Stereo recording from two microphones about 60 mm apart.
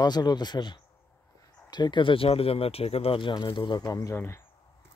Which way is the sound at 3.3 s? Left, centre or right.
Left.